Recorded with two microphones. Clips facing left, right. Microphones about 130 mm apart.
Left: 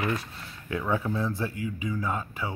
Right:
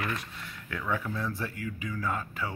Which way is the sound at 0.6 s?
25° left (ahead or behind).